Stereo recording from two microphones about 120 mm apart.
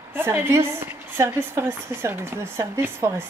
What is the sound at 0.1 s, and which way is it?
Speech, 20° right (ahead or behind).